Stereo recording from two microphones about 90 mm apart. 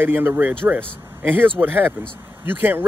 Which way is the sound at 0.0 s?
20° right (ahead or behind).